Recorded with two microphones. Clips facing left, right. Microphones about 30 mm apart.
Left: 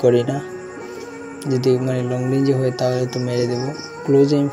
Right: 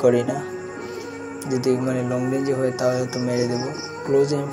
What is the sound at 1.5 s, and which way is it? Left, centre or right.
Speech, left.